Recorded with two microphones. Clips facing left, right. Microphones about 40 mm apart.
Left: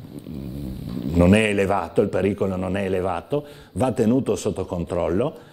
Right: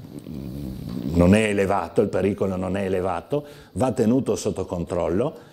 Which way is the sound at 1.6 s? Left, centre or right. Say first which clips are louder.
Left 1 dB; centre.